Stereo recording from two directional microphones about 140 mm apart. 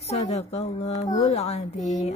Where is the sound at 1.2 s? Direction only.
45° left (ahead or behind).